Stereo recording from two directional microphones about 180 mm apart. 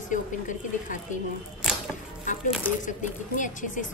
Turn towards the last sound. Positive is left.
turn(degrees=45)  # may be behind; listen again after turning